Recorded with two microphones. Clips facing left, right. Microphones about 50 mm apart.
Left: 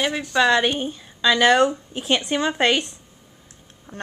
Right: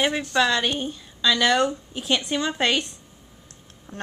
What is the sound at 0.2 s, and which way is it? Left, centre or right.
A woman's voice, centre.